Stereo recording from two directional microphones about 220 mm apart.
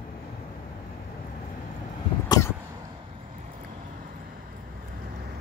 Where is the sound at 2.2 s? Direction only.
15° left (ahead or behind).